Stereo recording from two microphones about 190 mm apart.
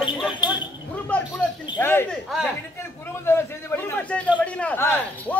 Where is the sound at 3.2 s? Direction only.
10° left (ahead or behind).